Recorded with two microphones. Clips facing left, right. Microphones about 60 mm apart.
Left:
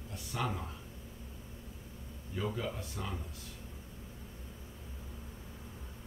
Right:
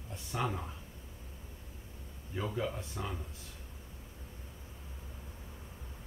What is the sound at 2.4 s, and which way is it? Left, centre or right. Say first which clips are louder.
Speech: right 1 dB; centre.